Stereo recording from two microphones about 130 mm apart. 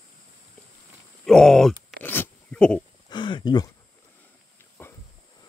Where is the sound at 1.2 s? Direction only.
5° left (ahead or behind).